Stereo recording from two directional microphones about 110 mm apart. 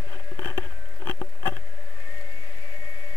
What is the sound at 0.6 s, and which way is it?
Patter, 20° left (ahead or behind).